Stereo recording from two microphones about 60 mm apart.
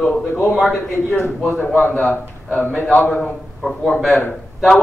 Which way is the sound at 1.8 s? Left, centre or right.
Left.